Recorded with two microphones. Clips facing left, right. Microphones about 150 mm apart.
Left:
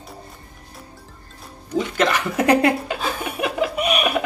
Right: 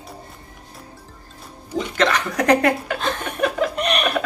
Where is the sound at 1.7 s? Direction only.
5° left (ahead or behind).